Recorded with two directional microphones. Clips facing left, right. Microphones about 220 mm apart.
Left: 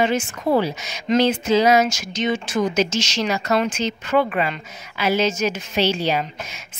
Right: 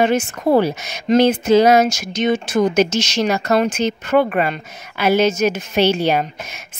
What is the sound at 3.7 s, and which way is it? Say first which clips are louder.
A woman's voice: right 4 dB; 60° right (ahead or behind).